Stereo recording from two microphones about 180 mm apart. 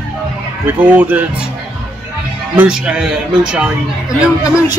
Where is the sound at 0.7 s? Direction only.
10° right (ahead or behind).